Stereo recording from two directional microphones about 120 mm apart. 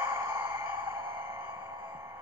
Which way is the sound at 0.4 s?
15° right (ahead or behind).